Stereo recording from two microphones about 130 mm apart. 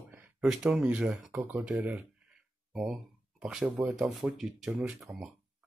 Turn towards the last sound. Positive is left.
turn(degrees=-5)  # may be behind; listen again after turning